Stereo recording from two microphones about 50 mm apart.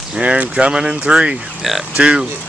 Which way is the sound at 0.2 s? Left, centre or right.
Right.